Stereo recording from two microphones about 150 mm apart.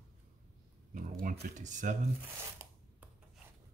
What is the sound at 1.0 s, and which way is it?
Speech, 65° right (ahead or behind).